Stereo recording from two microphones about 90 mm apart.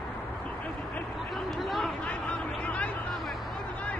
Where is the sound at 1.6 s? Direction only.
Centre (ahead or behind).